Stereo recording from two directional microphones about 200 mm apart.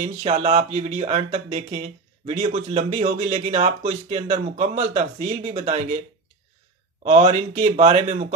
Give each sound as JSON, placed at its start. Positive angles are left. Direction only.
{"t": 0.0, "sound": "speech", "side_deg": -35}
{"t": 7.0, "sound": "speech", "side_deg": -30}